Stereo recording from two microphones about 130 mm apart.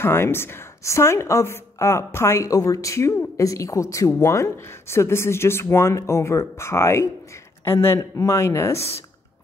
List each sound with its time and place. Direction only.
0.0 s speech: 15° left (ahead or behind)